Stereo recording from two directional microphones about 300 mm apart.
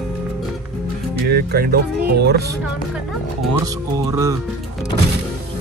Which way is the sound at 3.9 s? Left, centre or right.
Centre.